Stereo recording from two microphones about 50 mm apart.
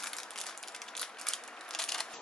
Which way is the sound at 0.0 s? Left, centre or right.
Centre.